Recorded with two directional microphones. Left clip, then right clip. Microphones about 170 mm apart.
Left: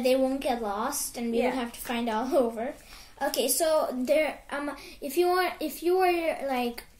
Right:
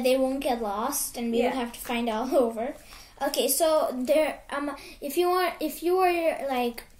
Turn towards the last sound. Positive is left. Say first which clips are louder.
# right 2 dB
turn(degrees=-10)  # may be behind; listen again after turning